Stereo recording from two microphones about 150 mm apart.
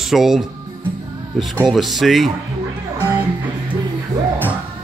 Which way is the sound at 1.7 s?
Centre (ahead or behind).